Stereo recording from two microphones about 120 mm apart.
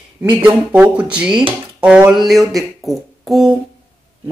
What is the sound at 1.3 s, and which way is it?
Speech, 45° right (ahead or behind).